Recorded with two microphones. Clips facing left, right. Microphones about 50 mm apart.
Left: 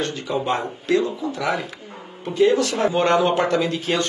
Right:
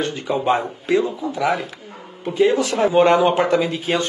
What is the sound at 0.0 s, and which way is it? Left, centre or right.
Speech, centre.